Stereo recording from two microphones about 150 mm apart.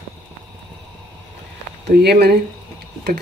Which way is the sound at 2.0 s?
90° right.